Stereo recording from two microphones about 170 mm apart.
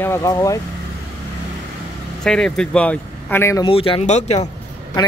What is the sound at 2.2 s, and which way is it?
Speech, 5° left (ahead or behind).